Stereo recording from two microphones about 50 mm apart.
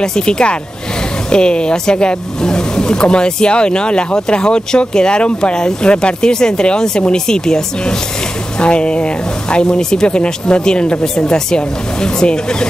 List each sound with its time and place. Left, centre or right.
0.0 s speech: centre